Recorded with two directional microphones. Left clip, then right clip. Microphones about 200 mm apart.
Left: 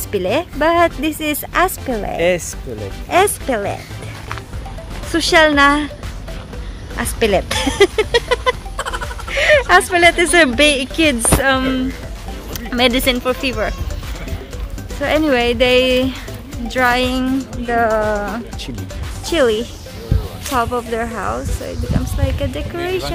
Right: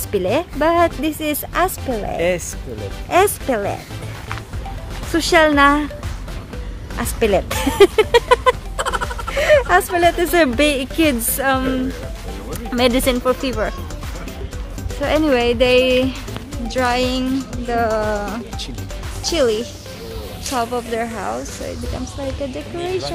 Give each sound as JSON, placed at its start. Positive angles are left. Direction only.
{"t": 0.1, "sound": "speech", "side_deg": -5}
{"t": 2.1, "sound": "speech", "side_deg": 40}
{"t": 3.1, "sound": "speech", "side_deg": -5}
{"t": 5.1, "sound": "speech", "side_deg": -10}
{"t": 7.0, "sound": "speech", "side_deg": 0}
{"t": 8.7, "sound": "speech", "side_deg": 0}
{"t": 15.0, "sound": "speech", "side_deg": 0}
{"t": 22.4, "sound": "speech", "side_deg": 0}
{"t": 22.8, "sound": "speech", "side_deg": 25}